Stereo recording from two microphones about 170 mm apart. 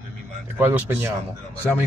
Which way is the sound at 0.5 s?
10° right (ahead or behind).